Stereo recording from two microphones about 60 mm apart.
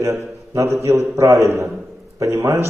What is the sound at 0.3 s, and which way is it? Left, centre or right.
A man's voice, right.